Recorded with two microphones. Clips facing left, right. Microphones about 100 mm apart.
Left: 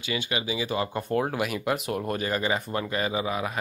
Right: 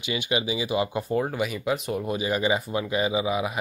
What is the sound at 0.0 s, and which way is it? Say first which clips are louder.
Speech: right 3 dB; 20° right (ahead or behind).